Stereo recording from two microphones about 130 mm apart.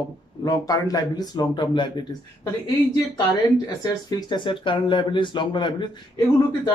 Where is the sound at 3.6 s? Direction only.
35° left (ahead or behind).